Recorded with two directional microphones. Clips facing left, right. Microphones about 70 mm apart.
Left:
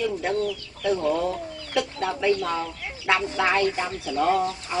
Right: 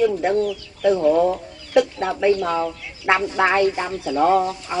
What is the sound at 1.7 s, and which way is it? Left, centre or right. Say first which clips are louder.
Speech: right 8 dB; right.